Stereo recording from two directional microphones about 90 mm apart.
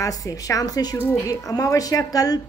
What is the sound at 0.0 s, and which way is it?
Speech, 40° left (ahead or behind).